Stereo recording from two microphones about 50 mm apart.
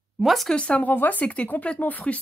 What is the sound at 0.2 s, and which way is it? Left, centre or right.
Speech, centre.